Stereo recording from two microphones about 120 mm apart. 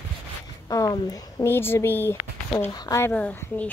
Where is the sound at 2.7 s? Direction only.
30° left (ahead or behind).